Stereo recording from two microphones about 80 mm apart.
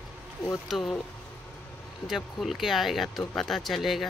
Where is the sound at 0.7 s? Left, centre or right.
Centre.